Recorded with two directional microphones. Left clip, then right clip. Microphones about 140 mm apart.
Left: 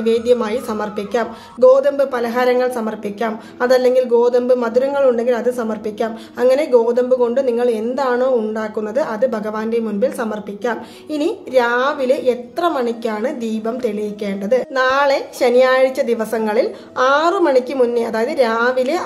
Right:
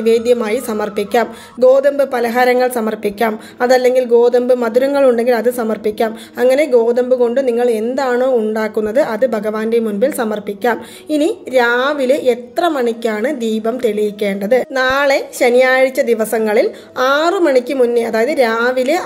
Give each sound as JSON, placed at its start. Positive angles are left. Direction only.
{"t": 0.0, "sound": "speech", "side_deg": -25}
{"t": 6.4, "sound": "a woman's voice", "side_deg": -25}
{"t": 8.5, "sound": "a woman's voice", "side_deg": -35}